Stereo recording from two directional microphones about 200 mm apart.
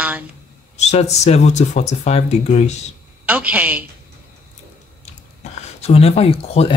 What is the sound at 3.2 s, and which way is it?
Speech, 5° right (ahead or behind).